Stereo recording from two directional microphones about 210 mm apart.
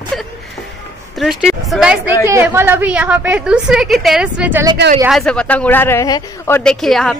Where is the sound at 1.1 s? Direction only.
Centre (ahead or behind).